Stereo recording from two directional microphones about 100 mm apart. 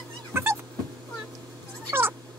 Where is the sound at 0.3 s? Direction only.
25° right (ahead or behind).